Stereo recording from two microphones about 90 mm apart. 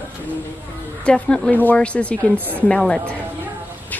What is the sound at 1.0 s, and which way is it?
Speech, 10° left (ahead or behind).